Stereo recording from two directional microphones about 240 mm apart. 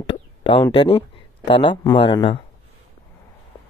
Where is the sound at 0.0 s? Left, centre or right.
Left.